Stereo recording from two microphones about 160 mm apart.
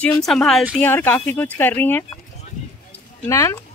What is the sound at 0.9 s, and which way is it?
Speech, 10° left (ahead or behind).